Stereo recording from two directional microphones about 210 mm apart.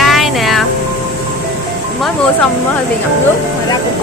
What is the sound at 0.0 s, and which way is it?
Music, centre (ahead or behind).